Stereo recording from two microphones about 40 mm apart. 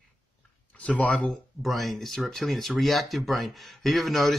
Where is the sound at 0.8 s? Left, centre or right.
Left.